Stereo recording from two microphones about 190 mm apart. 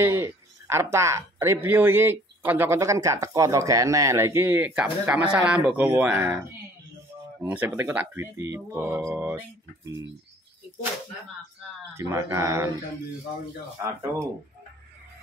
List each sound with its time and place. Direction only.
0.0 s speech: 15° right (ahead or behind)
7.3 s speech: 10° right (ahead or behind)
12.0 s speech: 15° right (ahead or behind)